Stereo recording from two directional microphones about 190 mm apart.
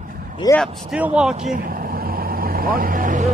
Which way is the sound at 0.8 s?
5° right (ahead or behind).